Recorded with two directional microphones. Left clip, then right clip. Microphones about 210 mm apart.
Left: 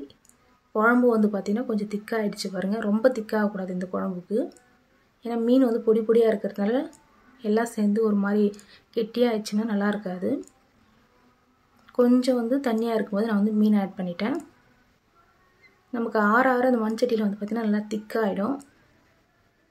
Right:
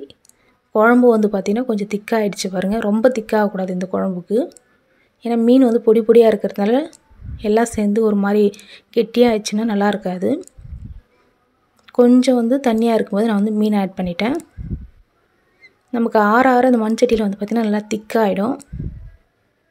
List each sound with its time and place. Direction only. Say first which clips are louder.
0.7 s speech: right 8 dB; 35° right (ahead or behind)
11.8 s speech: right 8 dB; 30° right (ahead or behind)
15.9 s speech: right 8 dB; 35° right (ahead or behind)